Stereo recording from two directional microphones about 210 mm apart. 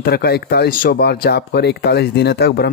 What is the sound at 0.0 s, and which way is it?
Speech, 50° left (ahead or behind).